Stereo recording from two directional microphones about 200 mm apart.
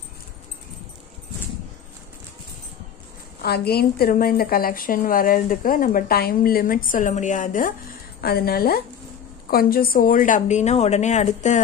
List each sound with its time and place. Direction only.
3.4 s a woman's voice: 50° left (ahead or behind); by 11.6 s 35° left (ahead or behind)